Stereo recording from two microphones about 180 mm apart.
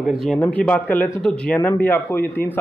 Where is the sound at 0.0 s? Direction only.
Centre (ahead or behind).